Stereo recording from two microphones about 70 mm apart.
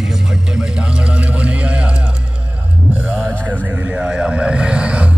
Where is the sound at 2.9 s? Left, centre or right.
Right.